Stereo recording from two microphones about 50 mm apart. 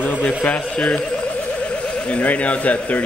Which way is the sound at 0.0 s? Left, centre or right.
Left.